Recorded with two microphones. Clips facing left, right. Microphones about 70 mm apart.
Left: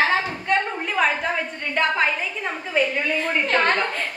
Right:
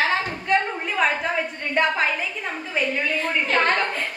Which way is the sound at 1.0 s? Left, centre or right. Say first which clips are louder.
Left 1 dB; centre.